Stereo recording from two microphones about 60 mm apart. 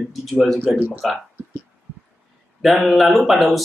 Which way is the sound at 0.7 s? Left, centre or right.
Right.